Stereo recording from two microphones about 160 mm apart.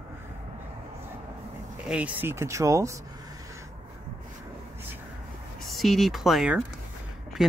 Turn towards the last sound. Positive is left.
turn(degrees=0)  # may be behind; listen again after turning